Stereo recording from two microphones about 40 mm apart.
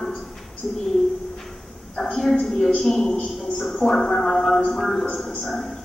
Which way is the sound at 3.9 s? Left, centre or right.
Centre.